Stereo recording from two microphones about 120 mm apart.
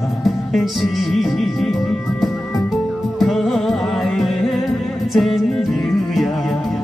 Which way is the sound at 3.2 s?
Centre (ahead or behind).